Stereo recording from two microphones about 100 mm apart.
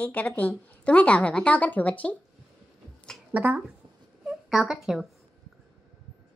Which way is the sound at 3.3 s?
15° right (ahead or behind).